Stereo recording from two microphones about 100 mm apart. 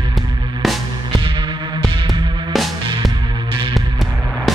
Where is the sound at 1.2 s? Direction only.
55° right (ahead or behind).